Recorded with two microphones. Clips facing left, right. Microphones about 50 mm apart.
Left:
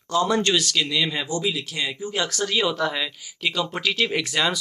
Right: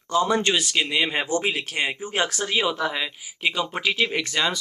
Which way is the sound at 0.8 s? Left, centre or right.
Right.